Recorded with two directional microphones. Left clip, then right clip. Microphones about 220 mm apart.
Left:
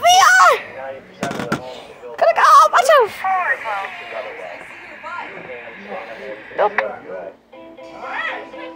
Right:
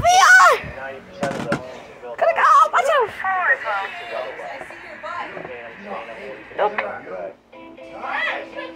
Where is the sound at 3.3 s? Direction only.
60° left (ahead or behind).